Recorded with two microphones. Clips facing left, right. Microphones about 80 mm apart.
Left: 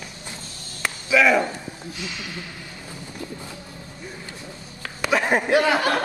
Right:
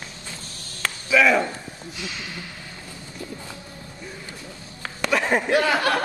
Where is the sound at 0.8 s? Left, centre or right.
Centre.